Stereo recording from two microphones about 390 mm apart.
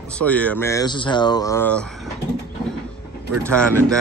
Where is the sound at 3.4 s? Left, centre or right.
Centre.